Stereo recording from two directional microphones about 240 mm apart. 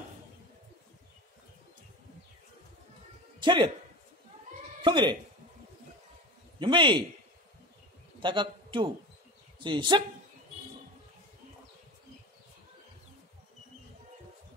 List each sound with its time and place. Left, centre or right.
3.3 s a man's voice: centre
4.8 s speech: centre
6.6 s a man's voice: centre
8.2 s a man's voice: centre